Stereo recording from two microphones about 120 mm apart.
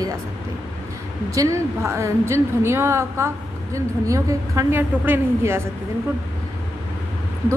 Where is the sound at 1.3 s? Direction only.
25° right (ahead or behind).